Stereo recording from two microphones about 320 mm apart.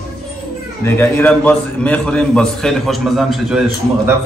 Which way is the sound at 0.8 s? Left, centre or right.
Centre.